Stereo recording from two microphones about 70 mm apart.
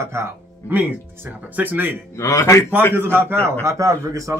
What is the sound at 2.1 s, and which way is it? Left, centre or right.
Speech, left.